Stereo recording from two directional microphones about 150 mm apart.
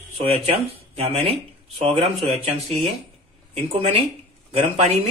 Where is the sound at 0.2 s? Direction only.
40° right (ahead or behind).